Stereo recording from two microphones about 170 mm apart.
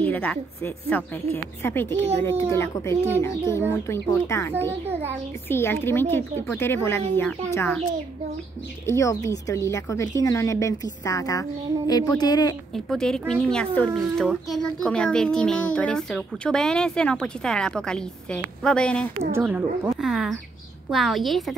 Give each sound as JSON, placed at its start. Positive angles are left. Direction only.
{"t": 0.0, "sound": "a woman's voice", "side_deg": 10}
{"t": 8.8, "sound": "speech", "side_deg": 15}
{"t": 12.7, "sound": "a child's voice", "side_deg": 0}
{"t": 19.3, "sound": "a child's voice", "side_deg": -10}